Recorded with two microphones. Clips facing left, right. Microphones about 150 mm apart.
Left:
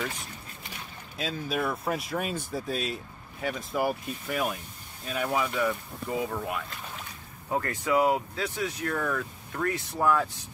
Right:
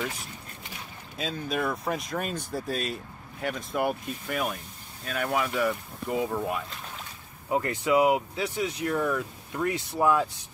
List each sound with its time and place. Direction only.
1.1 s speech: centre (ahead or behind)
7.4 s speech: 15° right (ahead or behind)